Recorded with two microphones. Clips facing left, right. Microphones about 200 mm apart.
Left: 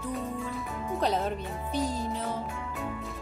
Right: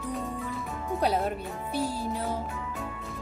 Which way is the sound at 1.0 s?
10° right (ahead or behind).